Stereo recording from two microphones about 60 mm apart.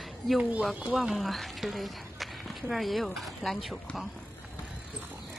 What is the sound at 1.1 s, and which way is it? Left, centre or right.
Speech, centre.